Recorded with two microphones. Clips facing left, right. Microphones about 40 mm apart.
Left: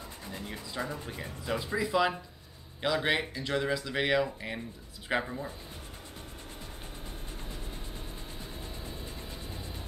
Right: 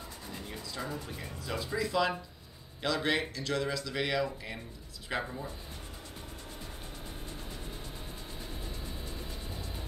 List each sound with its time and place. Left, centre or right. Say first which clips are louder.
0.3 s speech: left 2 dB; centre